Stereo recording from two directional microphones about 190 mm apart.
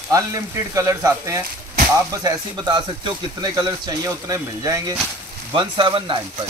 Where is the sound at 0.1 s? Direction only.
15° right (ahead or behind).